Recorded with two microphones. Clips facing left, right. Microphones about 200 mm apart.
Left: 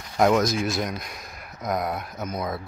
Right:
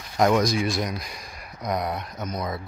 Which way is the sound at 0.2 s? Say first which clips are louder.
Even; centre (ahead or behind).